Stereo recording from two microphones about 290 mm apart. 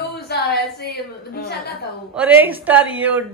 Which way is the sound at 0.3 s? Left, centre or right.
Left.